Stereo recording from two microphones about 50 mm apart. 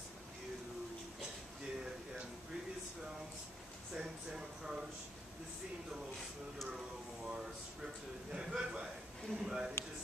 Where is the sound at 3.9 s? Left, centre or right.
Centre.